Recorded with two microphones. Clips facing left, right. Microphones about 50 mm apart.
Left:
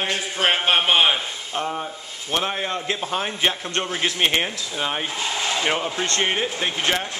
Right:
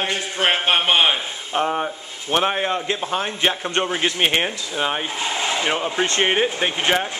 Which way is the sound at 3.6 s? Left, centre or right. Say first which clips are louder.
Right 3 dB; centre.